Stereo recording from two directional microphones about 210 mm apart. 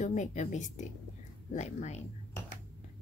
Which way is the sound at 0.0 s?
35° left (ahead or behind).